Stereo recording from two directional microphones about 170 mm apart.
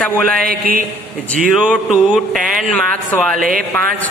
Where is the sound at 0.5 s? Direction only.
55° right (ahead or behind).